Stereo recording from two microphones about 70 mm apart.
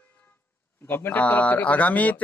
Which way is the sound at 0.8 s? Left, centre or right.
Left.